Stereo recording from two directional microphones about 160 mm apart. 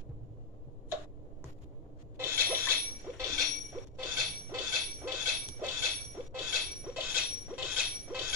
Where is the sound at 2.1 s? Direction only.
15° right (ahead or behind).